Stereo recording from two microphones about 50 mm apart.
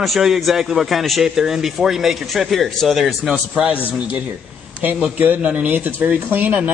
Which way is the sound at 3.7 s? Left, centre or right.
Right.